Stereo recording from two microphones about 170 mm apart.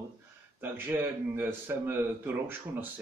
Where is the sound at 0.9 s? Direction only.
15° right (ahead or behind).